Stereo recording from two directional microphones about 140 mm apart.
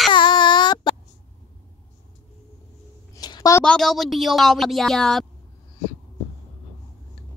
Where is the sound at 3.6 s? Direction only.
5° left (ahead or behind).